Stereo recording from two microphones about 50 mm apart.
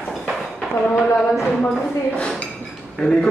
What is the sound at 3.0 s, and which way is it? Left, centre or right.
Speech, centre.